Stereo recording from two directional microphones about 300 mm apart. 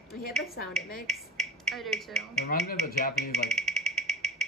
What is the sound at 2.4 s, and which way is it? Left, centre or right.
Speech, left.